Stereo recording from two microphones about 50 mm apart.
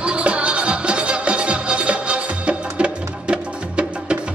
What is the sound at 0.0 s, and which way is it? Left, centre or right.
Music, right.